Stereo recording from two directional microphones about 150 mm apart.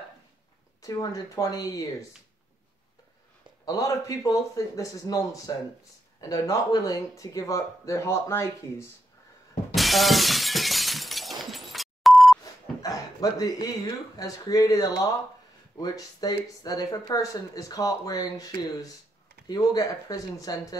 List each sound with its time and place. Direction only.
0.8 s speech: 25° left (ahead or behind)
3.6 s speech: 25° left (ahead or behind)
9.8 s shatter: centre (ahead or behind)
12.8 s speech: 25° left (ahead or behind)